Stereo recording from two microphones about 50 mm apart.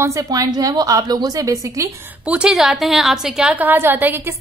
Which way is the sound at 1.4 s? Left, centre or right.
Right.